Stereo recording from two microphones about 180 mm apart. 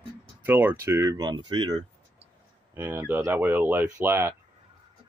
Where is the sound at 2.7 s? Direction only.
10° right (ahead or behind).